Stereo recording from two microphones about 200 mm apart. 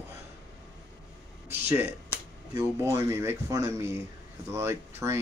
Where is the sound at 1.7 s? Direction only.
10° right (ahead or behind).